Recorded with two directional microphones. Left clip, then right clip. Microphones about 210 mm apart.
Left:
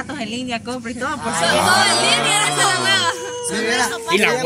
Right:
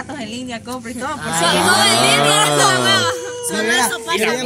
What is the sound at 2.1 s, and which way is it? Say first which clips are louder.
Music: right 3 dB; 35° right (ahead or behind).